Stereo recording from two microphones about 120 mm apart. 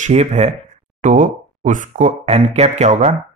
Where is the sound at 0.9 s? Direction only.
90° right.